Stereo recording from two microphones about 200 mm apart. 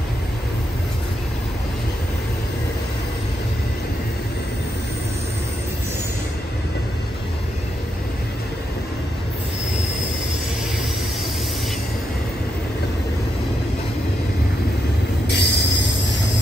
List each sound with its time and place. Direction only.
15.2 s train: 55° left (ahead or behind)